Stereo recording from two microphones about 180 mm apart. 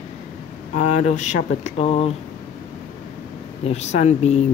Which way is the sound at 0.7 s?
40° left (ahead or behind).